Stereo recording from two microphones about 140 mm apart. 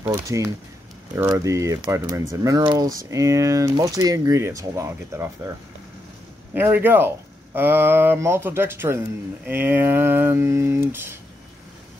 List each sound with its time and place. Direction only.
0.0 s speech: 20° right (ahead or behind)
6.5 s speech: 15° right (ahead or behind)